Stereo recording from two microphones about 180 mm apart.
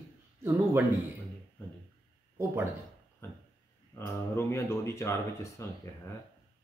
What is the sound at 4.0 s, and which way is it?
Speech, 15° left (ahead or behind).